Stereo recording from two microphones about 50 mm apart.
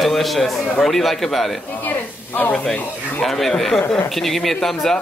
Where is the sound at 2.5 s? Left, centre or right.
Centre.